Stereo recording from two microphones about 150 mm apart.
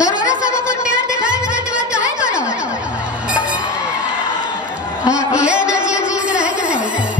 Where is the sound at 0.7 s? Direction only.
5° right (ahead or behind).